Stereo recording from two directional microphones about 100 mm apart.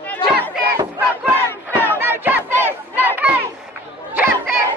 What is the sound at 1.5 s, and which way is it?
Battle cry, 20° left (ahead or behind).